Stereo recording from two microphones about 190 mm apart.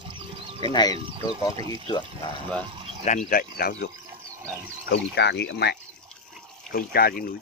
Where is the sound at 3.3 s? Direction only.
50° left (ahead or behind).